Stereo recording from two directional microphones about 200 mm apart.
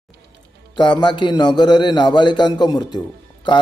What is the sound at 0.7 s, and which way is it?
A man's voice, 20° left (ahead or behind).